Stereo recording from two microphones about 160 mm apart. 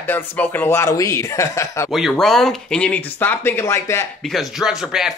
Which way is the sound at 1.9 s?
Centre (ahead or behind).